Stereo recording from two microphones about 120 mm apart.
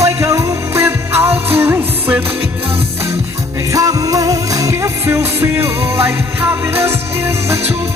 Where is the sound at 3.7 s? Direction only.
30° right (ahead or behind).